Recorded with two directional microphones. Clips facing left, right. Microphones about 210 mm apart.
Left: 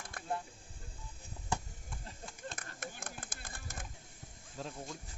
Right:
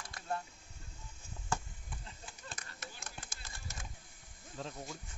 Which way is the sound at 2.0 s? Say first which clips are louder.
Left 8 dB; 50° left (ahead or behind).